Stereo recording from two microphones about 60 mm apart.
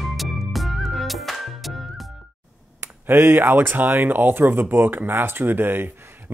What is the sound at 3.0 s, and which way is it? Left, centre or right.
Speech, right.